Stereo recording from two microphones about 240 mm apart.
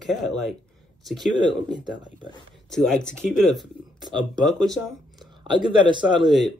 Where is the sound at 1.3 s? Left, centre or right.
Centre.